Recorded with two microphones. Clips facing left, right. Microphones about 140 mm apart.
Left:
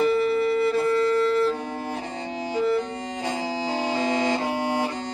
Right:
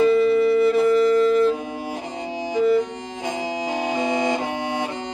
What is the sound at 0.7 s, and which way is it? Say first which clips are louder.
Music: right 5 dB; 20° right (ahead or behind).